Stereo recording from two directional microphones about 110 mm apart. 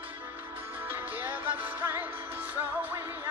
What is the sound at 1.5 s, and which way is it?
Music, 15° right (ahead or behind).